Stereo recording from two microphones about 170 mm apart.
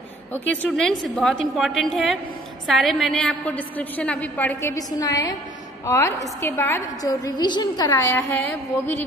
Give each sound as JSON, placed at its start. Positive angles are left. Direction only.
{"t": 0.3, "sound": "a woman's voice", "side_deg": 10}